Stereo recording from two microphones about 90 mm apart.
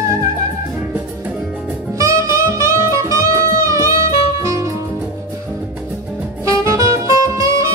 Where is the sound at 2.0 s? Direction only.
40° right (ahead or behind).